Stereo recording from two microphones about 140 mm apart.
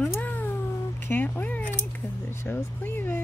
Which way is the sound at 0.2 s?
10° left (ahead or behind).